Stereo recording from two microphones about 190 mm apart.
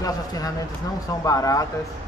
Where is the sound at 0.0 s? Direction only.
20° left (ahead or behind).